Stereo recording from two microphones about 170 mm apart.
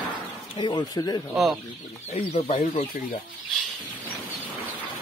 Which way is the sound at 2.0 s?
40° left (ahead or behind).